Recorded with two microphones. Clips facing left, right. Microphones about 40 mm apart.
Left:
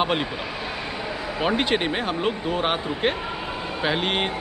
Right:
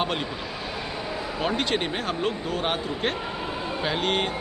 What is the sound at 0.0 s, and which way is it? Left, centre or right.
Speech, centre.